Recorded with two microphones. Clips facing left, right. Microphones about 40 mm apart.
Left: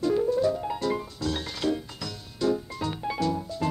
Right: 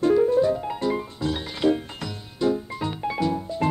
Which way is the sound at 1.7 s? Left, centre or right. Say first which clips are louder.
Right 4 dB; right.